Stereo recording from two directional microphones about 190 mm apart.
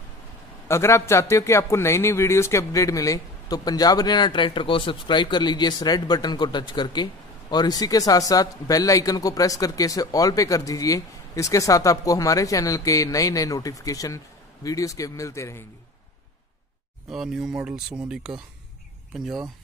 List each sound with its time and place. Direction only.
0.7 s a man's voice: 15° left (ahead or behind)
17.1 s speech: centre (ahead or behind)